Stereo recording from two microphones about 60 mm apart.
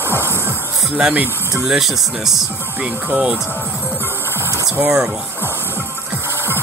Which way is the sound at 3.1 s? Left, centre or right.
Centre.